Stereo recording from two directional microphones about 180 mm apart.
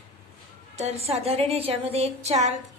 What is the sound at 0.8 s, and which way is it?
A woman's voice, 35° right (ahead or behind).